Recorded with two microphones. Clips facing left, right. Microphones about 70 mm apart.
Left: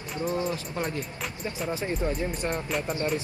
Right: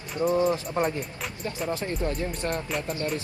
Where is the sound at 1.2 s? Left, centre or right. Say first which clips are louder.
Right 1 dB; centre.